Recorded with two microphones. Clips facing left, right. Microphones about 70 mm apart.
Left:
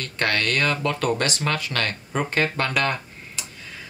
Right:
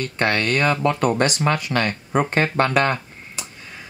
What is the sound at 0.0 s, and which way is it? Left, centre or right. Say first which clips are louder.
Speech: right 3 dB; right.